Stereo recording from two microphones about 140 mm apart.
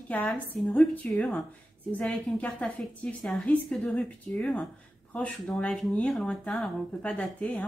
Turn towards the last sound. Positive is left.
turn(degrees=5)  # may be behind; listen again after turning